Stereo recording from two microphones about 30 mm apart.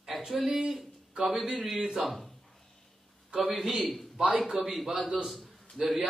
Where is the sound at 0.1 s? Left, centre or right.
Centre.